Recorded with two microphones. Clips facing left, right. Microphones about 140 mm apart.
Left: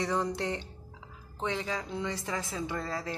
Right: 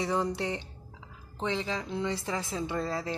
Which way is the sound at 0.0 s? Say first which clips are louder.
Right 1 dB; 5° right (ahead or behind).